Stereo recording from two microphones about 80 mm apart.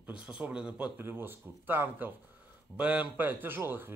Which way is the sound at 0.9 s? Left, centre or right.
Right.